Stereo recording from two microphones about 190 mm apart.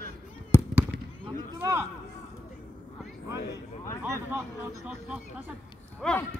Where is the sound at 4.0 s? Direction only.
10° right (ahead or behind).